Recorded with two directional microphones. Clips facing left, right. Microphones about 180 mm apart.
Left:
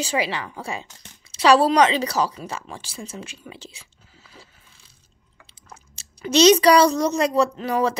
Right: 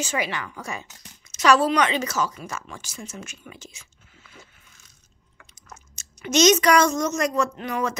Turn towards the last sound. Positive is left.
turn(degrees=30)  # may be behind; listen again after turning